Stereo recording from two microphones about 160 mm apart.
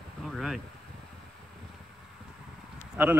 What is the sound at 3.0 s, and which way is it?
Speech, 10° right (ahead or behind).